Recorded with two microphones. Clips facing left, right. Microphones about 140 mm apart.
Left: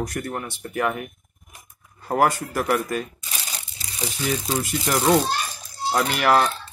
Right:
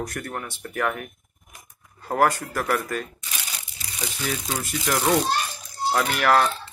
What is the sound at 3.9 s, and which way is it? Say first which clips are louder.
Speech: left 4 dB; 25° left (ahead or behind).